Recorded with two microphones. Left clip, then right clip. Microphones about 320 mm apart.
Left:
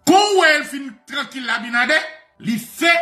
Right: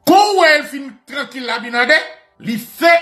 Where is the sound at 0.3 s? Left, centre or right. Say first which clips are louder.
Right 3 dB; centre.